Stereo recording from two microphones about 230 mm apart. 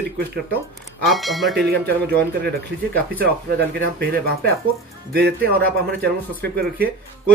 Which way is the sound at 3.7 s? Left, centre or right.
Right.